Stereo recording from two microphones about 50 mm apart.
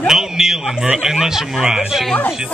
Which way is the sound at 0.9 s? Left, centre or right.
Centre.